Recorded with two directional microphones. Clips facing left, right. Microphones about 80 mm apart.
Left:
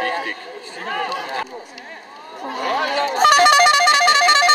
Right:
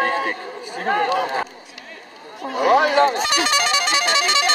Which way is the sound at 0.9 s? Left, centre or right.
Right.